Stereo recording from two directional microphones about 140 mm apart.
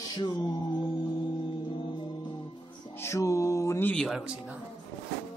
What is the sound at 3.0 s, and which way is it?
Mantra, 20° left (ahead or behind).